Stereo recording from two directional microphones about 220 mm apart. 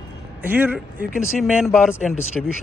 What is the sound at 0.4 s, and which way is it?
Speech, 5° right (ahead or behind).